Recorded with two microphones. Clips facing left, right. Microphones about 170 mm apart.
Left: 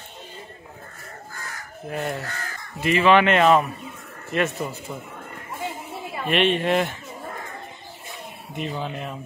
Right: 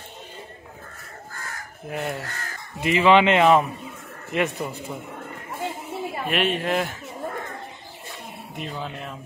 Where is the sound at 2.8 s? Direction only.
15° right (ahead or behind).